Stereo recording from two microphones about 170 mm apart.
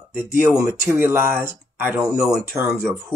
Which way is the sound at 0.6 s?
15° right (ahead or behind).